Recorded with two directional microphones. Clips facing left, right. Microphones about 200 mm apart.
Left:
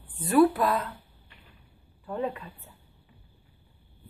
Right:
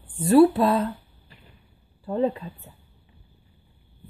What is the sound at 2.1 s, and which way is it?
Speech, 30° right (ahead or behind).